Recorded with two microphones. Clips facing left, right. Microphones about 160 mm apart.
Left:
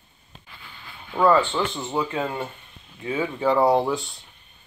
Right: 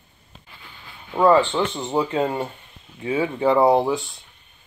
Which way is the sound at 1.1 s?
15° right (ahead or behind).